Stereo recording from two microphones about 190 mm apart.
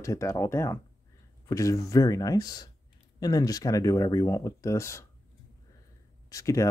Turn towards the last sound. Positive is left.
turn(degrees=15)  # may be behind; listen again after turning